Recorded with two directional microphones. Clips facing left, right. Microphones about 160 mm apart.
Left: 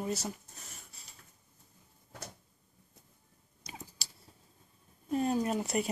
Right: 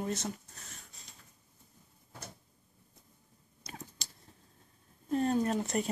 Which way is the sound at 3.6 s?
10° left (ahead or behind).